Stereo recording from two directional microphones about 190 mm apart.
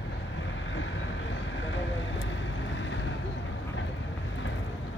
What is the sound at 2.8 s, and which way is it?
Vehicle, 75° left (ahead or behind).